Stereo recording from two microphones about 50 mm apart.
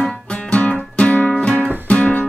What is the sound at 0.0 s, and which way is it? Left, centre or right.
Music, left.